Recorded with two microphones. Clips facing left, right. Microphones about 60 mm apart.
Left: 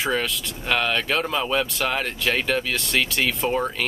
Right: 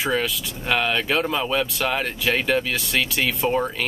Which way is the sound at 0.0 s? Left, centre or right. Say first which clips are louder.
Right 1 dB; centre.